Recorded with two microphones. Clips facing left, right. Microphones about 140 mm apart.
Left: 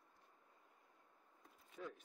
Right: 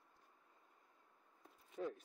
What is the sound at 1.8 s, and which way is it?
Speech, 35° right (ahead or behind).